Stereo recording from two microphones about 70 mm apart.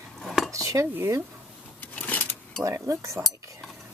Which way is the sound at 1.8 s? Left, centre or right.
Left.